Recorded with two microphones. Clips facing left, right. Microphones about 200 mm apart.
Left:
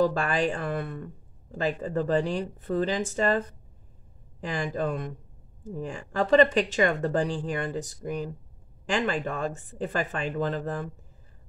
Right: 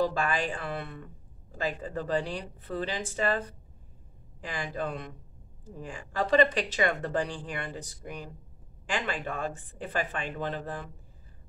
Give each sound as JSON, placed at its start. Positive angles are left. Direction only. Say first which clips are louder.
{"t": 0.0, "sound": "speech", "louder": "left 4 dB", "side_deg": 45}